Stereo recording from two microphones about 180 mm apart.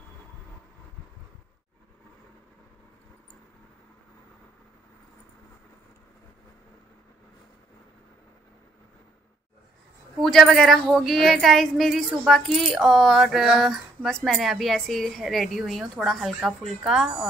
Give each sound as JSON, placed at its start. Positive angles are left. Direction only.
{"t": 10.2, "sound": "a woman's voice", "side_deg": 0}